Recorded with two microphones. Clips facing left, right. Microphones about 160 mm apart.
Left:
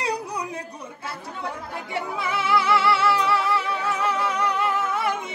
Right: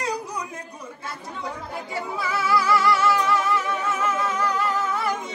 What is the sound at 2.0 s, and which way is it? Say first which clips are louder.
Music: left 1 dB; 25° left (ahead or behind).